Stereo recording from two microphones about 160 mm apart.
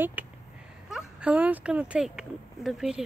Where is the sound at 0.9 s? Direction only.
5° right (ahead or behind).